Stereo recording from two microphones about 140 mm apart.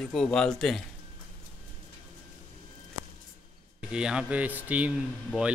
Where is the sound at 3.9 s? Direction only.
5° right (ahead or behind).